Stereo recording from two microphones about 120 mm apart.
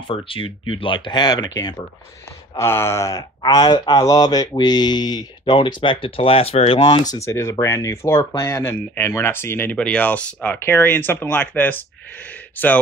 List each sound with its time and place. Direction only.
0.1 s speech: 50° left (ahead or behind)
2.5 s speech: 20° left (ahead or behind)